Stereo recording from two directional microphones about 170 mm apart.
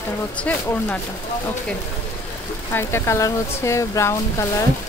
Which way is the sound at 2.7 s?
15° left (ahead or behind).